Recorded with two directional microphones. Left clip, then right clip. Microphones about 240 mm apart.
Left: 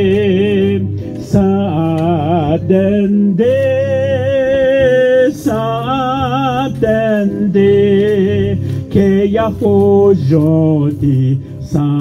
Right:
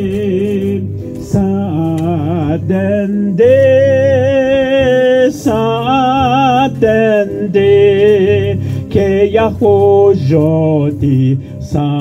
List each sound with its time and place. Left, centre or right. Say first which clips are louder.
0.0 s music: left 3 dB; centre
2.0 s mantra: left 3 dB; right
3.3 s music: right 6 dB; right